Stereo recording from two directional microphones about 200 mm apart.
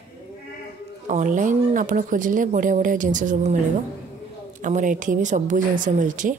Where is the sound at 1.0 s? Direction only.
40° right (ahead or behind).